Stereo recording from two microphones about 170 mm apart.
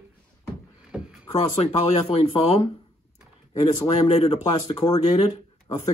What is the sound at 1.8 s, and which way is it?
Speech, 35° left (ahead or behind).